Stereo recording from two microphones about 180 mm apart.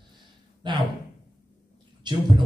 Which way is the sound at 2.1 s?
25° right (ahead or behind).